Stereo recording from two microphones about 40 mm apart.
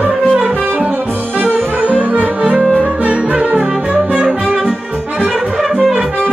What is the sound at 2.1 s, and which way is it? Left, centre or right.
Music, right.